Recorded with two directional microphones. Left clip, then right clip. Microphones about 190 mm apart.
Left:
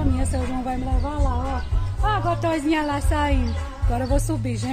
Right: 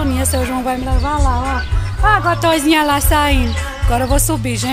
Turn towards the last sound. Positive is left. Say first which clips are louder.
# right 9 dB
turn(degrees=0)  # may be behind; listen again after turning